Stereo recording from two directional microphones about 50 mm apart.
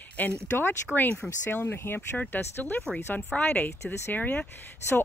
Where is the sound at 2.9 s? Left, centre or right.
Centre.